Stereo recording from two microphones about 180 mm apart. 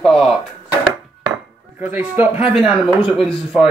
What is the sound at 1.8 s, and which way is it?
Speech, 10° right (ahead or behind).